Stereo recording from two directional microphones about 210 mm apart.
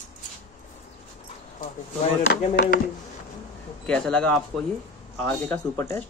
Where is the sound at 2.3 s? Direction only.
45° left (ahead or behind).